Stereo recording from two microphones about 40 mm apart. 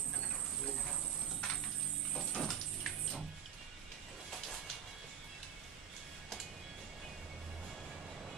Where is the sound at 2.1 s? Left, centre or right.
Left.